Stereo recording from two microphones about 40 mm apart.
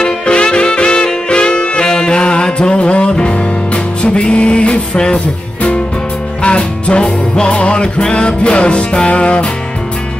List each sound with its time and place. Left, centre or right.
0.0 s music: left